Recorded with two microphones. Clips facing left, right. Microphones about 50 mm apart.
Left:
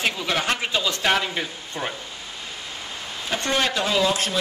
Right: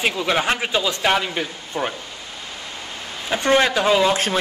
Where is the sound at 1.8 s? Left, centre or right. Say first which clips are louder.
Right 5 dB; centre.